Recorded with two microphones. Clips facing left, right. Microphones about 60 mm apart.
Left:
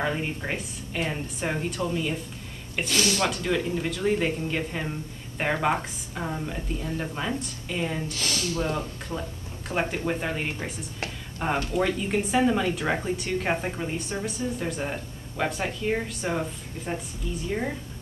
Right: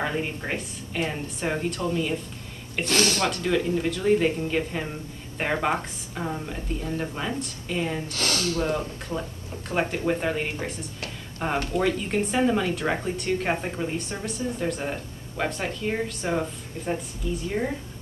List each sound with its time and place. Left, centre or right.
0.0 s speech: centre
2.8 s speech: right
3.3 s speech: centre
8.1 s speech: right
8.6 s speech: centre